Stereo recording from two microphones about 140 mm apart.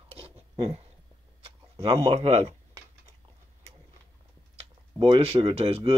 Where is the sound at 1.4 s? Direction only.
45° right (ahead or behind).